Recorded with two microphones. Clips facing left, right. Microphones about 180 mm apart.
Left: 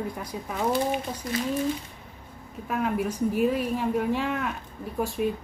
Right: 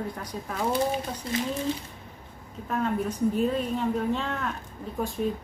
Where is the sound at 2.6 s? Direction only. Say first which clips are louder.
Left 1 dB; 10° left (ahead or behind).